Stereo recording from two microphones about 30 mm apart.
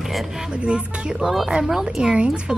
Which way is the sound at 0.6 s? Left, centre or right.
Right.